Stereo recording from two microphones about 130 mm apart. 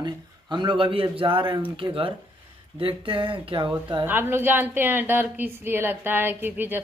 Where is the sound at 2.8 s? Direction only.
40° right (ahead or behind).